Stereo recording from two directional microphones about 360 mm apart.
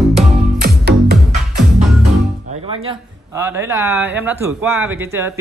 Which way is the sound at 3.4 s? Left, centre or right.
Centre.